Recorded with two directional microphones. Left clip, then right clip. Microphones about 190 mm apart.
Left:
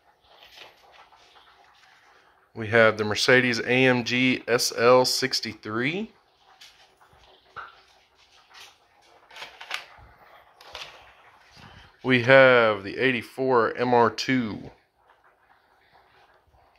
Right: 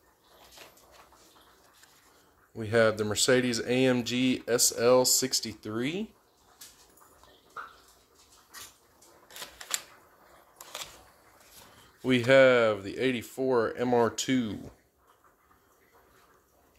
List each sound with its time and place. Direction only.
2.5 s speech: 15° right (ahead or behind)
12.0 s speech: 15° right (ahead or behind)